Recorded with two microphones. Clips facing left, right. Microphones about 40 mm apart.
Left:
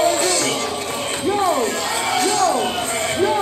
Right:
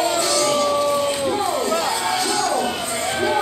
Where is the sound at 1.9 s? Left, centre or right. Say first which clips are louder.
Left 2 dB; left.